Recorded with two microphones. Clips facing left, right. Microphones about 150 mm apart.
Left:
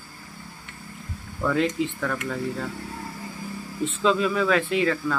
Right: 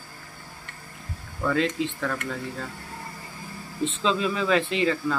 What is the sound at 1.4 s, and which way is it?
Speech, 10° left (ahead or behind).